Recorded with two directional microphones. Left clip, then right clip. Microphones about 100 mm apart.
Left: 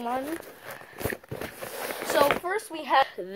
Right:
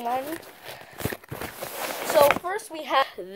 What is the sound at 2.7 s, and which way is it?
Speech, 40° right (ahead or behind).